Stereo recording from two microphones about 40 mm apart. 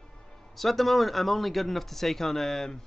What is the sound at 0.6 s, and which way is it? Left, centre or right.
Speech, centre.